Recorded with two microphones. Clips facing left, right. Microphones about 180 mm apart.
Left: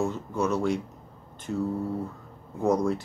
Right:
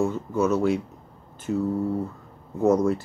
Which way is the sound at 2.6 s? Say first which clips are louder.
Right 4 dB; centre (ahead or behind).